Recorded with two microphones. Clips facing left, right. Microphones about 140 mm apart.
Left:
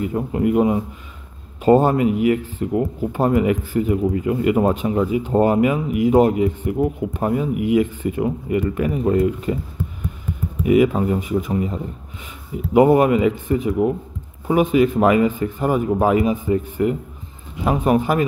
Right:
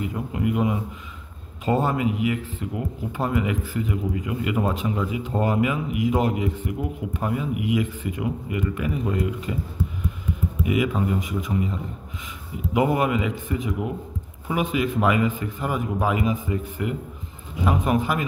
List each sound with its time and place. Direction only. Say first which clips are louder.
0.0 s speech: left 6 dB; 40° left (ahead or behind)
10.6 s speech: left 8 dB; 40° left (ahead or behind)